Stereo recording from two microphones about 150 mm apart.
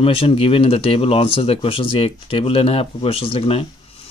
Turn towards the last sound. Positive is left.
turn(degrees=40)  # may be behind; listen again after turning